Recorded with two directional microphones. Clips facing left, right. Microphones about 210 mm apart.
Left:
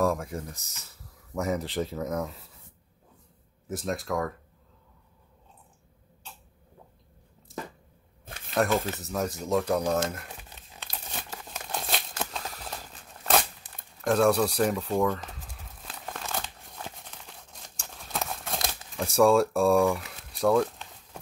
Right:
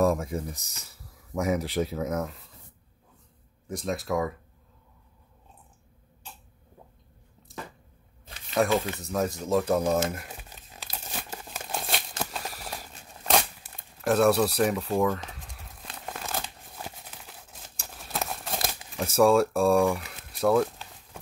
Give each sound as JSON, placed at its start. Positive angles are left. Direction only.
{"t": 0.0, "sound": "speech", "side_deg": -20}
{"t": 3.6, "sound": "speech", "side_deg": 0}
{"t": 8.7, "sound": "speech", "side_deg": 0}
{"t": 11.4, "sound": "crumpling", "side_deg": 0}
{"t": 14.0, "sound": "a sound", "side_deg": -5}
{"t": 16.3, "sound": "tearing", "side_deg": -5}